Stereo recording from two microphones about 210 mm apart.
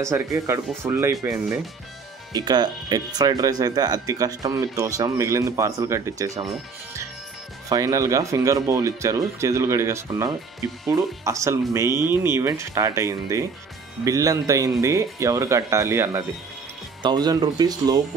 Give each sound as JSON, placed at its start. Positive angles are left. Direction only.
{"t": 0.0, "sound": "speech", "side_deg": -15}
{"t": 7.7, "sound": "speech", "side_deg": -15}